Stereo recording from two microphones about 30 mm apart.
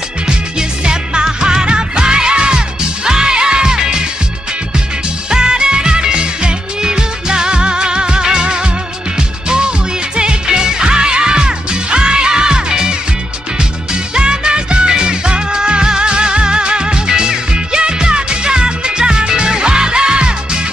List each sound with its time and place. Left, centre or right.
0.6 s music: right
5.3 s music: right
14.1 s music: right